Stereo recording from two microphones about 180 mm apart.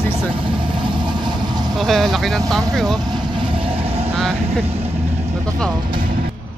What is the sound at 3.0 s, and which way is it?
Vehicle, 25° right (ahead or behind).